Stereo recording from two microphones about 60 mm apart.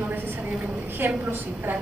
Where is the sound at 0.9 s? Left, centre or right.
Right.